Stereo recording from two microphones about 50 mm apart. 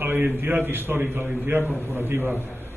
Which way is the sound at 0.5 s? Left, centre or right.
Right.